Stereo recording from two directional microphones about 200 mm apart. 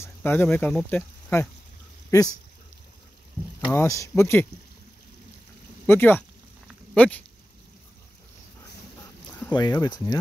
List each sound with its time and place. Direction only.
0.0 s speech: 10° left (ahead or behind)
3.7 s speech: 15° left (ahead or behind)
5.9 s speech: 10° left (ahead or behind)
9.5 s speech: 20° left (ahead or behind)